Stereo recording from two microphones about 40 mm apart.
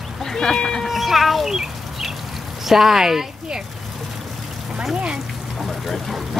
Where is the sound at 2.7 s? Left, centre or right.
Centre.